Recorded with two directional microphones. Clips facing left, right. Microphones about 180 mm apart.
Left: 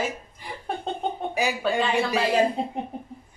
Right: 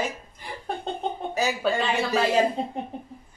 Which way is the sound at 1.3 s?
10° left (ahead or behind).